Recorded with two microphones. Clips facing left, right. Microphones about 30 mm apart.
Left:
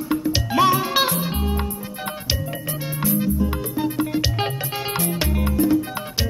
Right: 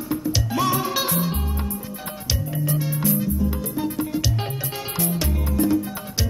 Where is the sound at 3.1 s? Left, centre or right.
Left.